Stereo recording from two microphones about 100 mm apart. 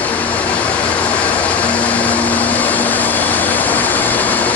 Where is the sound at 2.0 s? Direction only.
15° left (ahead or behind).